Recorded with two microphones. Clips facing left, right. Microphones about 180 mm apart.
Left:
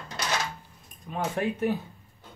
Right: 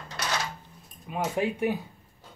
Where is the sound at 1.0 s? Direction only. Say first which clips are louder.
Right 1 dB; 10° right (ahead or behind).